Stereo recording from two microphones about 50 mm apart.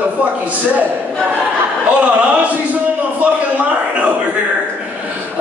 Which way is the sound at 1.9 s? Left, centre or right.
Right.